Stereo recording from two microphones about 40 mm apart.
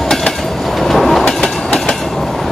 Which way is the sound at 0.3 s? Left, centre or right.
Centre.